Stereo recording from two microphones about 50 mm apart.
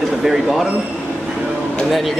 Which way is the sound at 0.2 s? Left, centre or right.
Centre.